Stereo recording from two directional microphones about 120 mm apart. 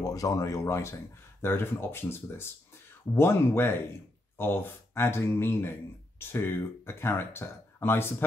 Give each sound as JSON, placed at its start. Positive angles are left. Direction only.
{"t": 0.0, "sound": "speech", "side_deg": 30}